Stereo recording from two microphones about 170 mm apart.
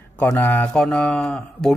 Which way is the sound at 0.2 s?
10° left (ahead or behind).